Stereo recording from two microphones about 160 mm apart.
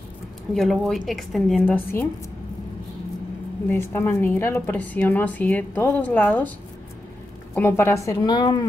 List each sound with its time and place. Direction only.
0.6 s a woman's voice: centre (ahead or behind)
1.6 s speech: 15° left (ahead or behind)
3.7 s speech: 15° left (ahead or behind)
7.5 s a woman's voice: 15° left (ahead or behind)